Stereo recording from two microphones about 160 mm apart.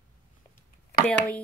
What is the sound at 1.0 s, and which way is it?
Speech, 5° left (ahead or behind).